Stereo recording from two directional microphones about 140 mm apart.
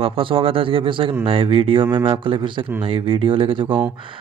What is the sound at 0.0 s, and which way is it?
Speech, 40° right (ahead or behind).